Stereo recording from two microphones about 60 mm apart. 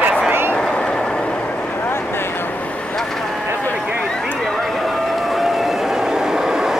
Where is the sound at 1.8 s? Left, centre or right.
Left.